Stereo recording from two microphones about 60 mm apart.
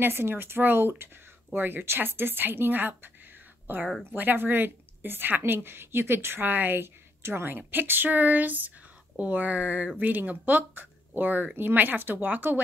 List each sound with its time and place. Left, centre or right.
0.0 s a woman's voice: right